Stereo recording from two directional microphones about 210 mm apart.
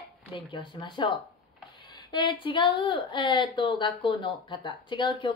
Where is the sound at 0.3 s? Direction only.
25° left (ahead or behind).